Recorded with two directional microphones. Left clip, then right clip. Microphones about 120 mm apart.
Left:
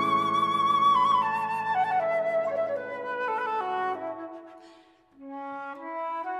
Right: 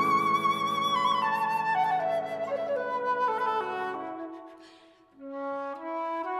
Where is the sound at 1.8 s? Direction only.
30° right (ahead or behind).